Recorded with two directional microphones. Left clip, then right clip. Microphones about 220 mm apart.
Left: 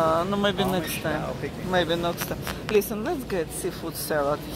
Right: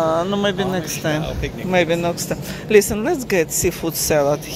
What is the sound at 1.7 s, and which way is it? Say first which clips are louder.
Speech: right 6 dB; 15° right (ahead or behind).